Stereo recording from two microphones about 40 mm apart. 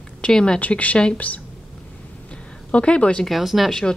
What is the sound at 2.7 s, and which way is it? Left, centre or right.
Speech, left.